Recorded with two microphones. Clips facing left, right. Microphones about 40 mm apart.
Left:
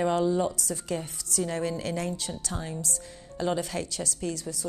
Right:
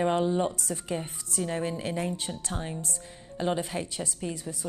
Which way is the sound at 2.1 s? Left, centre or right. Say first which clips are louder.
Even; right.